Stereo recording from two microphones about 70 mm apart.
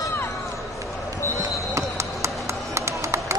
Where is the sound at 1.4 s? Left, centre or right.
Right.